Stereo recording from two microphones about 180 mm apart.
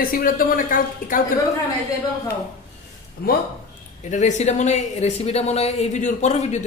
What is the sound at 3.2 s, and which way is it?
Speech, 60° left (ahead or behind).